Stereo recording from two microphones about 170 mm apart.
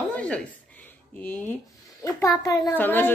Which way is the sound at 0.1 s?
5° left (ahead or behind).